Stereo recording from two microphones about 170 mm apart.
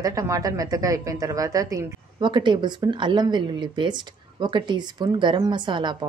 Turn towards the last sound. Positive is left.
turn(degrees=-25)  # may be behind; listen again after turning